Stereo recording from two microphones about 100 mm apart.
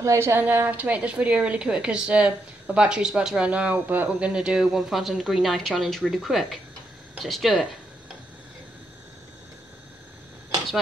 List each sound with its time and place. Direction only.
0.0 s a woman's voice: 30° right (ahead or behind); by 7.6 s centre (ahead or behind)